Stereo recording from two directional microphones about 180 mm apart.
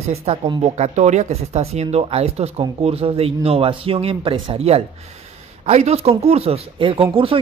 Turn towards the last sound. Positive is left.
turn(degrees=-30)  # may be behind; listen again after turning